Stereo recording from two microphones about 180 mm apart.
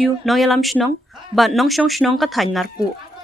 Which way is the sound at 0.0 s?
Centre (ahead or behind).